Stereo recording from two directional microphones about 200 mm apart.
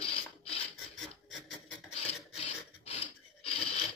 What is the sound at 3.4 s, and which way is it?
Sewing machine, 30° left (ahead or behind).